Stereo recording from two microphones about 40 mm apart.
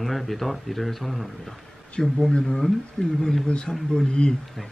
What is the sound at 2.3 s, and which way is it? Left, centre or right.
Speech, left.